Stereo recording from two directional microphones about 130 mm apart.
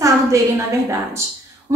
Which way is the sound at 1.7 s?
25° right (ahead or behind).